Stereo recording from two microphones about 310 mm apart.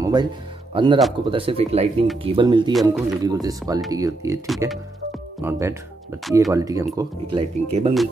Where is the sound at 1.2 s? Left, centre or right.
Centre.